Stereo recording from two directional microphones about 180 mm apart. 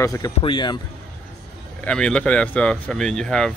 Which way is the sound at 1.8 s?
5° left (ahead or behind).